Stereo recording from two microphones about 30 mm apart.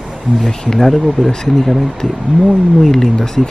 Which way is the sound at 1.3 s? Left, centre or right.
Left.